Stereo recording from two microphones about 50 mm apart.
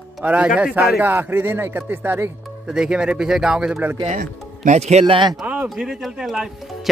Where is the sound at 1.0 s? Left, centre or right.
Right.